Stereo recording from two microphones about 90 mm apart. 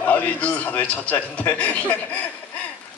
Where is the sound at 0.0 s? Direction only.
15° left (ahead or behind).